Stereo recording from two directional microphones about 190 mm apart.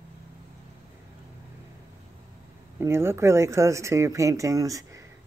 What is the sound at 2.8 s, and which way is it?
Speech, 15° right (ahead or behind).